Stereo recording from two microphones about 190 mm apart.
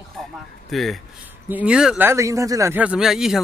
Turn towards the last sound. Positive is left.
turn(degrees=0)  # may be behind; listen again after turning